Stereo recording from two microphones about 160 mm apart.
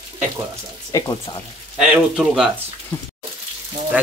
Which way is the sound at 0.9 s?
20° left (ahead or behind).